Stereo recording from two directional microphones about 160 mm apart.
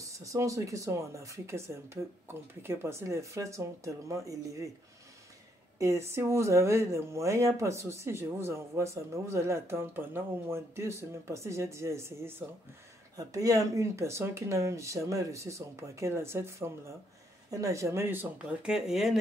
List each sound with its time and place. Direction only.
0.0 s speech: 20° right (ahead or behind)
5.8 s speech: 15° right (ahead or behind); by 19.1 s centre (ahead or behind)